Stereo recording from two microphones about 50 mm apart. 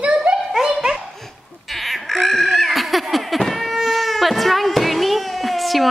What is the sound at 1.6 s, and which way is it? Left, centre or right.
Cat, centre.